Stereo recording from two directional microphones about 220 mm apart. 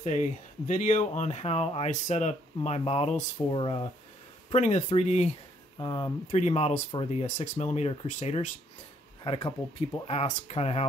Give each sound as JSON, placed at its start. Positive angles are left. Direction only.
{"t": 0.0, "sound": "speech", "side_deg": 35}
{"t": 5.8, "sound": "speech", "side_deg": 20}
{"t": 6.2, "sound": "speech", "side_deg": 30}
{"t": 9.2, "sound": "speech", "side_deg": 20}